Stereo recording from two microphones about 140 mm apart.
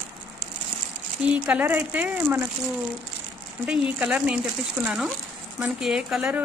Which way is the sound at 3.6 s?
5° right (ahead or behind).